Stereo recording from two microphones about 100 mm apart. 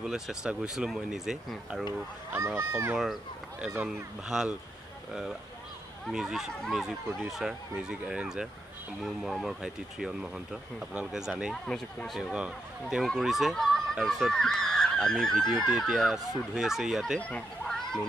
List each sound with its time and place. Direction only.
0.0 s speech: 5° right (ahead or behind)
2.3 s speech: 25° right (ahead or behind)
2.9 s speech: centre (ahead or behind)
6.0 s speech: 5° right (ahead or behind)
11.6 s speech: 5° left (ahead or behind)
12.2 s speech: 10° right (ahead or behind)
17.2 s speech: 10° left (ahead or behind)